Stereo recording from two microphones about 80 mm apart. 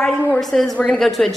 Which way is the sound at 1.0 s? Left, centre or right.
Centre.